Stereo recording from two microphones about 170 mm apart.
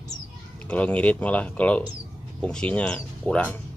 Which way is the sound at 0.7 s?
5° left (ahead or behind).